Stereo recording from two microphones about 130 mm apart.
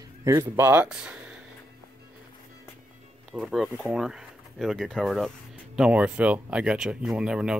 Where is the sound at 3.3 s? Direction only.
Centre (ahead or behind).